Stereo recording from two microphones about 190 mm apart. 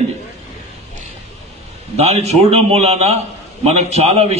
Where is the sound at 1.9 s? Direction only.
35° right (ahead or behind).